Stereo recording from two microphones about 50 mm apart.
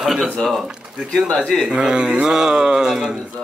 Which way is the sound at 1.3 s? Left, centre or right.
Centre.